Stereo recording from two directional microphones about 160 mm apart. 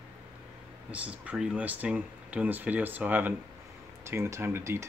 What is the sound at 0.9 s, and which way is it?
Speech, 10° right (ahead or behind).